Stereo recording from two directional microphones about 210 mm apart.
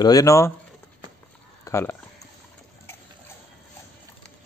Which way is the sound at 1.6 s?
10° left (ahead or behind).